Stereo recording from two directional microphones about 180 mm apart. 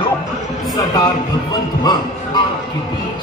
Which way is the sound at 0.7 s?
20° left (ahead or behind).